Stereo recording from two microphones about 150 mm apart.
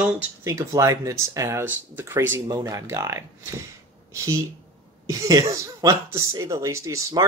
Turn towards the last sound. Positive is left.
turn(degrees=-20)  # may be behind; listen again after turning